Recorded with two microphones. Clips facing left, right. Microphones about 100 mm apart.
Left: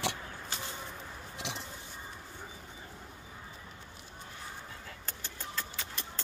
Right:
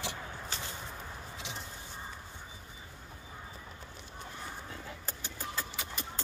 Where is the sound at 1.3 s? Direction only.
70° left (ahead or behind).